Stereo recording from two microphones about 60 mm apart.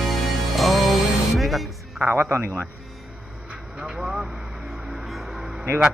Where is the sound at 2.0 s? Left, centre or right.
Right.